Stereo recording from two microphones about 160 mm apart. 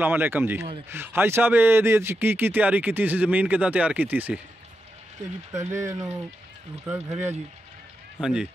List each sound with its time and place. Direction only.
0.0 s a man's voice: 10° right (ahead or behind)
5.5 s a man's voice: 20° right (ahead or behind)